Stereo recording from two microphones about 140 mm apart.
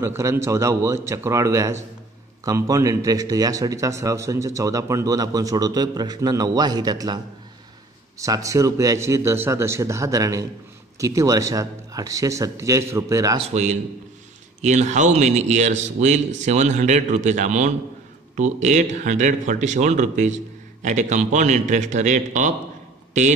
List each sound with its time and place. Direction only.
0.0 s speech: 20° right (ahead or behind)
8.2 s speech: 25° right (ahead or behind)
13.5 s a man's voice: 55° right (ahead or behind)